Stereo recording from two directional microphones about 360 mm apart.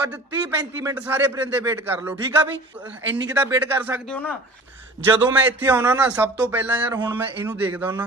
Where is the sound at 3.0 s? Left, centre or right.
Right.